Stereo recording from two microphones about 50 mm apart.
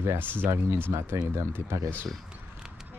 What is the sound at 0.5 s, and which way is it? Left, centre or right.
Speech, right.